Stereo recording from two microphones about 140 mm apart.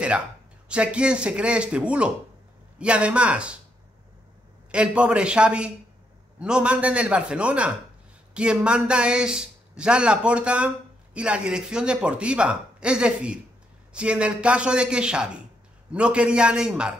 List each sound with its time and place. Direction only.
0.7 s a man's voice: 5° right (ahead or behind)
4.6 s a man's voice: 5° right (ahead or behind)